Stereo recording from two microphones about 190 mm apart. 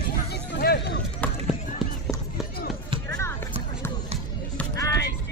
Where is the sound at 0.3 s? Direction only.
60° left (ahead or behind).